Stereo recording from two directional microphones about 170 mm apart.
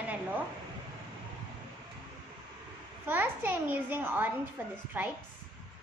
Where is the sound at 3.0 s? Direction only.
10° right (ahead or behind).